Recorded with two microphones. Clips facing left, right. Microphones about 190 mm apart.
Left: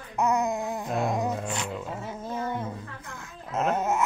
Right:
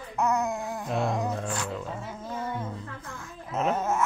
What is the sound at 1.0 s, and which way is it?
Music, 20° left (ahead or behind).